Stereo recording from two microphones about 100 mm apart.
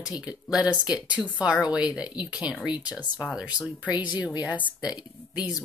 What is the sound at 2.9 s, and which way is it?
Speech, 45° left (ahead or behind).